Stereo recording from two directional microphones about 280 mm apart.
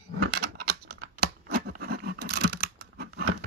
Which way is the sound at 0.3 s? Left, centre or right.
Right.